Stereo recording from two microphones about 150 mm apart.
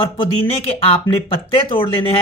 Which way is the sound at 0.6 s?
40° left (ahead or behind).